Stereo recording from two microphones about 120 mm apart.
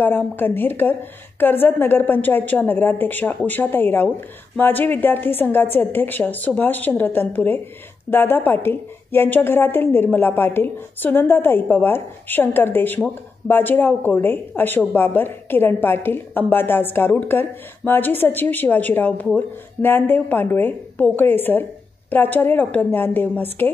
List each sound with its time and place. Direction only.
0.0 s a woman's voice: 15° left (ahead or behind)